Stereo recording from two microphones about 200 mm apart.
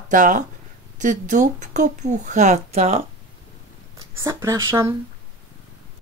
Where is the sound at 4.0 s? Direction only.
15° right (ahead or behind).